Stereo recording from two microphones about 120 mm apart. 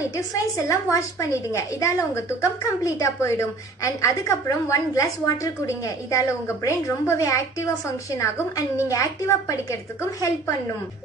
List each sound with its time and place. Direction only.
0.7 s a woman's voice: 25° left (ahead or behind)